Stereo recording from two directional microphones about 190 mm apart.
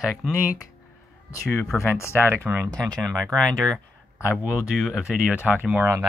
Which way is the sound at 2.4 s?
10° right (ahead or behind).